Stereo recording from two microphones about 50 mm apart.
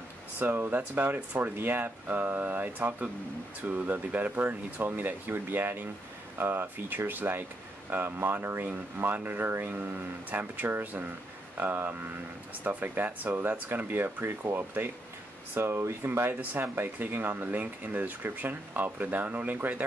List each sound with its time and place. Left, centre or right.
0.7 s speech: right
15.5 s speech: right
16.3 s speech: right